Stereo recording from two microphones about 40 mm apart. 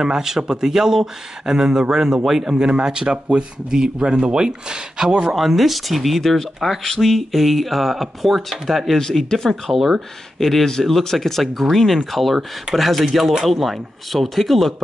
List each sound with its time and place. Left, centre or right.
0.0 s speech: centre
5.3 s speech: centre
9.8 s speech: centre